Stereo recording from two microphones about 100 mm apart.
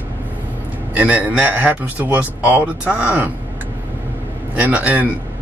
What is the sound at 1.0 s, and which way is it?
A man's voice, 15° right (ahead or behind).